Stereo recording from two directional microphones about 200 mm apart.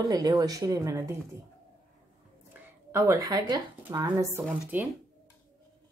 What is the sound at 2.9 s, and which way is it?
Speech, 15° right (ahead or behind).